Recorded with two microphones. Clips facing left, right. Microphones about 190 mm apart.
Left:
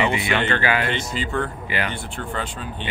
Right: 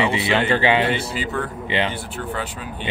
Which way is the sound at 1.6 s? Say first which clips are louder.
Right 4 dB; 25° right (ahead or behind).